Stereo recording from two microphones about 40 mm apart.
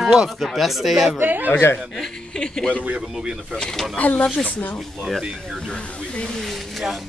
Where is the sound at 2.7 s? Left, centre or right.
Right.